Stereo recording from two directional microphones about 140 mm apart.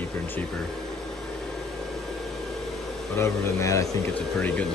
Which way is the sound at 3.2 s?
20° left (ahead or behind).